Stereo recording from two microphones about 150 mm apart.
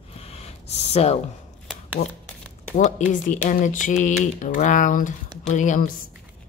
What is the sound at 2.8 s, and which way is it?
Speech, 55° left (ahead or behind).